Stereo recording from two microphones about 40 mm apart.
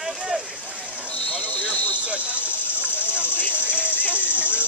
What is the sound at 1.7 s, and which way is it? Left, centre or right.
Vehicle, right.